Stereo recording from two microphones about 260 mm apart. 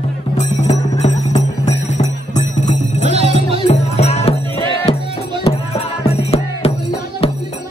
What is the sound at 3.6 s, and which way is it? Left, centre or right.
Music, left.